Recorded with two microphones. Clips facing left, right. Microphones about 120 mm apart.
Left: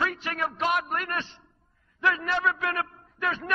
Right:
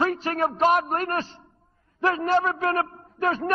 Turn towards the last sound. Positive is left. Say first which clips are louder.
# right 6 dB
turn(degrees=-40)  # may be behind; listen again after turning